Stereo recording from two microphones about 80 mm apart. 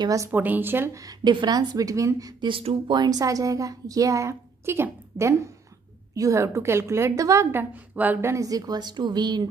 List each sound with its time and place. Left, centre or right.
0.3 s a woman's voice: right
1.2 s speech: right
2.4 s a woman's voice: right
7.5 s a woman's voice: right
8.3 s speech: right